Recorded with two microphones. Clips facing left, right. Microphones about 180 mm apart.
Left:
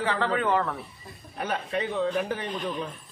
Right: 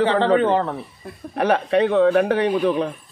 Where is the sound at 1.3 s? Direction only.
75° right (ahead or behind).